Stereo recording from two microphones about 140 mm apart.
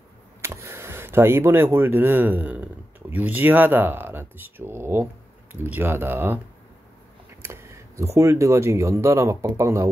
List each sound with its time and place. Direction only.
0.4 s speech: 20° right (ahead or behind)
7.4 s speech: 20° right (ahead or behind)